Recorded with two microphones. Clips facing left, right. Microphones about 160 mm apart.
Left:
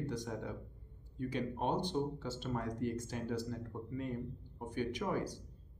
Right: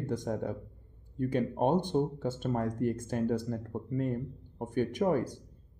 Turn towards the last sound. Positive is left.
turn(degrees=-50)  # may be behind; listen again after turning